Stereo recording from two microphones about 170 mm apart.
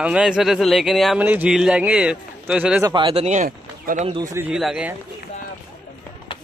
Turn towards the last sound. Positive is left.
turn(degrees=-5)  # may be behind; listen again after turning